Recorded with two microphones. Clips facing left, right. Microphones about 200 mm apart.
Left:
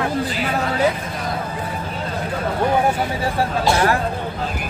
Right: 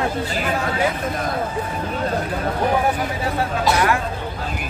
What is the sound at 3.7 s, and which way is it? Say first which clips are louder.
Speech: left 1 dB; 30° left (ahead or behind).